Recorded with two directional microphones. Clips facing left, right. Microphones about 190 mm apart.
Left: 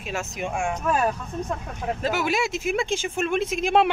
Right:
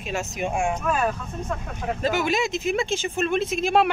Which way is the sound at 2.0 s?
5° left (ahead or behind).